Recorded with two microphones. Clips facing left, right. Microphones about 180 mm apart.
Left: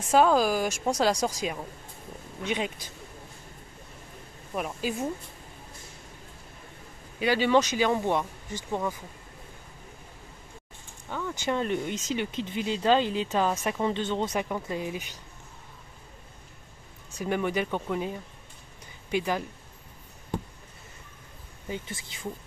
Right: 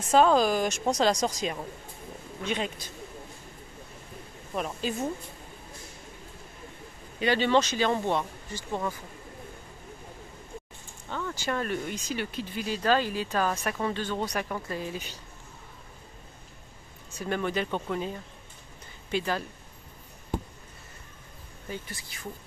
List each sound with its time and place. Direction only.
0.1 s speech: 10° left (ahead or behind)
4.6 s speech: 10° left (ahead or behind)
7.2 s speech: 10° left (ahead or behind)
11.1 s a sound: 10° left (ahead or behind)
11.4 s speech: 20° left (ahead or behind)
17.2 s speech: 15° left (ahead or behind)
21.6 s speech: 20° left (ahead or behind)